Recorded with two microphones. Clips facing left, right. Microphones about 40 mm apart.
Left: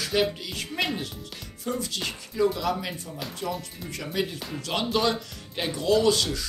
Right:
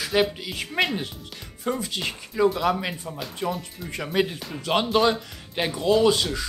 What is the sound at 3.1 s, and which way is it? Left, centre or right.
Speech, right.